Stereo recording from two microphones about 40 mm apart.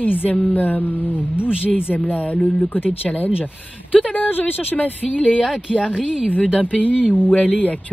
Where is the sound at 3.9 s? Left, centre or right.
Left.